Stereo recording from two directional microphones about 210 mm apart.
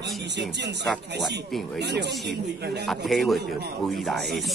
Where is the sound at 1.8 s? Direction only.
55° right (ahead or behind).